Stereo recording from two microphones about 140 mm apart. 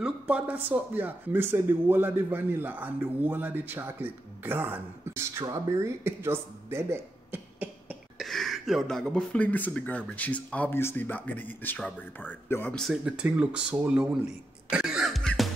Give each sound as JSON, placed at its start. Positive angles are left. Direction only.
{"t": 0.0, "sound": "speech", "side_deg": -10}
{"t": 8.2, "sound": "speech", "side_deg": 0}
{"t": 12.7, "sound": "speech", "side_deg": 0}
{"t": 14.7, "sound": "music", "side_deg": -5}